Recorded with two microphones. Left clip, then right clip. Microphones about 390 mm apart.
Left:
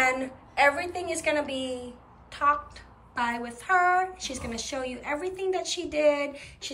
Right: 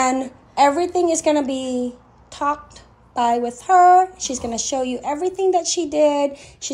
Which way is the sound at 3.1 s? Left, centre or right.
Centre.